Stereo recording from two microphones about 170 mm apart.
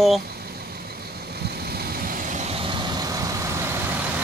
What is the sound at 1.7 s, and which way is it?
Vehicle, 55° right (ahead or behind).